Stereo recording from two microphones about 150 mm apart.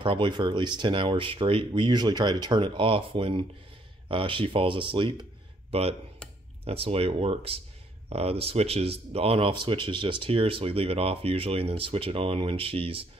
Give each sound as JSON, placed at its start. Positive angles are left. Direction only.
{"t": 0.0, "sound": "speech", "side_deg": -35}